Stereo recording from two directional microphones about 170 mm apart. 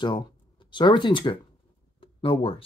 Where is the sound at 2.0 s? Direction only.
30° left (ahead or behind).